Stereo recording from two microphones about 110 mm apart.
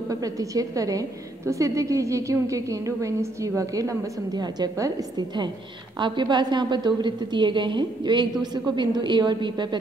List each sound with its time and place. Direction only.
0.1 s a woman's voice: 35° right (ahead or behind)
5.9 s a woman's voice: 45° right (ahead or behind)